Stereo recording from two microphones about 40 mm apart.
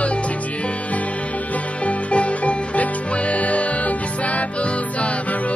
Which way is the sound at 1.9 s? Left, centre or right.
Left.